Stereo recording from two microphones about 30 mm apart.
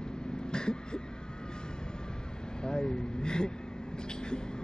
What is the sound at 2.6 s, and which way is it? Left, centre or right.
Speech, left.